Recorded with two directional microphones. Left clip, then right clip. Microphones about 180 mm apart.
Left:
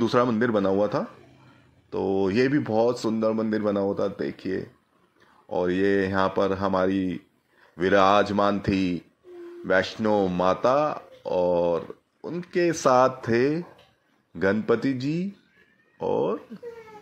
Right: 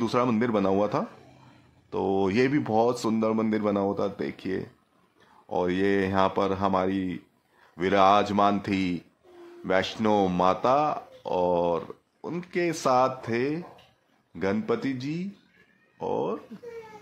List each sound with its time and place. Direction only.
0.0 s speech: 10° left (ahead or behind)
9.9 s speech: 10° right (ahead or behind)
10.4 s speech: 5° left (ahead or behind)